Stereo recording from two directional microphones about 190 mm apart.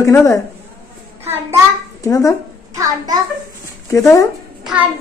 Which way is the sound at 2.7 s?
20° right (ahead or behind).